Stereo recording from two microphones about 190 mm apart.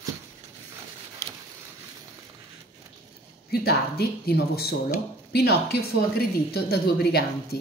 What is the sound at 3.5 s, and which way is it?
Speech, 55° left (ahead or behind).